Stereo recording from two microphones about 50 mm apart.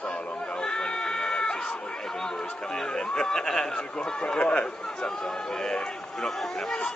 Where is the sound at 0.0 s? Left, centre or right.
Centre.